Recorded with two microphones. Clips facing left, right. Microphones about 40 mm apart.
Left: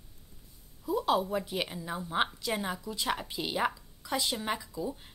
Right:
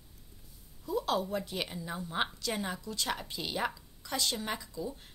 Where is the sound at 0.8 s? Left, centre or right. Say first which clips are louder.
Left 3 dB; centre.